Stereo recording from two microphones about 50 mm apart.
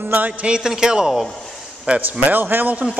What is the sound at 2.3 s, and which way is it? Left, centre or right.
Speech, right.